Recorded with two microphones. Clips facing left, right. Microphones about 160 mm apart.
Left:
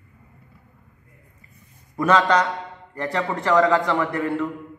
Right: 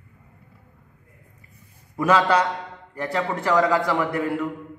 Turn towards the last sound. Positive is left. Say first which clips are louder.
# left 1 dB
turn(degrees=-10)  # may be behind; listen again after turning